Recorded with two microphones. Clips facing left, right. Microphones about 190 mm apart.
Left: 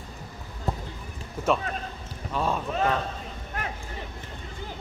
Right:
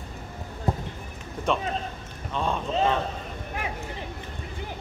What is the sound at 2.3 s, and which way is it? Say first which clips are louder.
Speech: left 1 dB; 5° left (ahead or behind).